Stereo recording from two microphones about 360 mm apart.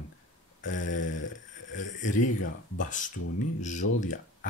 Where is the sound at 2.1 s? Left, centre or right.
Left.